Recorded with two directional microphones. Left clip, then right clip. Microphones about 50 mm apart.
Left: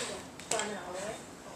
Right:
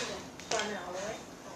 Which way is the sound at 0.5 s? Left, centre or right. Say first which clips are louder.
Right 1 dB; left.